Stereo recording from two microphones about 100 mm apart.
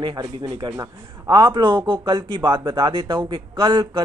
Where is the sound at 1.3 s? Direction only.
45° right (ahead or behind).